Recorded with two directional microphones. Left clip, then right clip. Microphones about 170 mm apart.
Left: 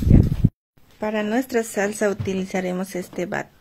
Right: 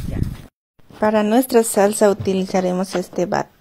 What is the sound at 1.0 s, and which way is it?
Speech, 25° right (ahead or behind).